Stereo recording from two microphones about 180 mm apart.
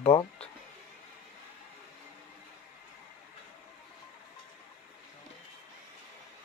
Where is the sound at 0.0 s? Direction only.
30° left (ahead or behind).